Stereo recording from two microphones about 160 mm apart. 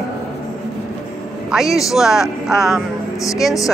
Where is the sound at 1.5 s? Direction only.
Centre (ahead or behind).